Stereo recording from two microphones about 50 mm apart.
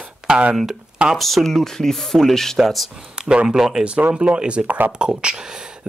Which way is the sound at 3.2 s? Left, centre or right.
Centre.